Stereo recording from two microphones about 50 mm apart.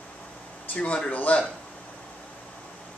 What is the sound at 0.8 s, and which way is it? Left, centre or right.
Speech, left.